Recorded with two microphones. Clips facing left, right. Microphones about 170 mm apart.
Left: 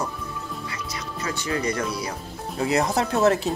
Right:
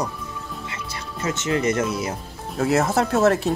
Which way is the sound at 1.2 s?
20° right (ahead or behind).